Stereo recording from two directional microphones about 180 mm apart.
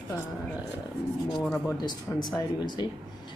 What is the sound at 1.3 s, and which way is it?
Speech, centre (ahead or behind).